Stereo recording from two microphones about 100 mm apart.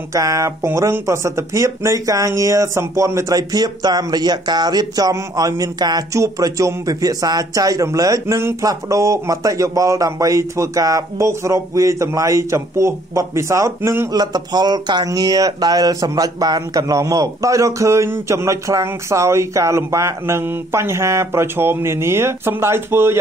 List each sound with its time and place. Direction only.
0.1 s a man's voice: 35° right (ahead or behind)
14.1 s speech: 40° right (ahead or behind); by 23.1 s 25° right (ahead or behind)